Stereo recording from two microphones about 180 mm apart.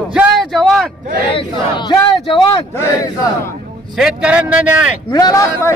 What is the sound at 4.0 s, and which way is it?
Speech, 5° right (ahead or behind).